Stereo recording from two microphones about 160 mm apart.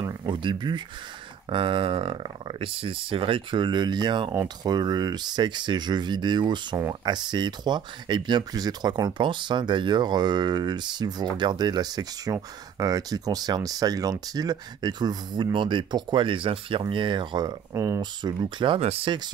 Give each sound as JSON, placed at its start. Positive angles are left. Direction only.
{"t": 0.0, "sound": "speech", "side_deg": -25}